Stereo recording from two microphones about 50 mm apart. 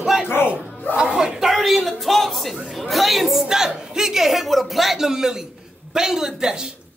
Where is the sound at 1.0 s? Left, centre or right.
Centre.